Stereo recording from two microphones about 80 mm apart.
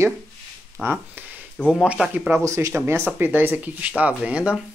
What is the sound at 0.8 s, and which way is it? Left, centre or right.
Speech, centre.